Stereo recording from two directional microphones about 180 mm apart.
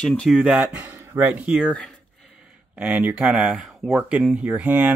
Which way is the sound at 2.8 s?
10° right (ahead or behind).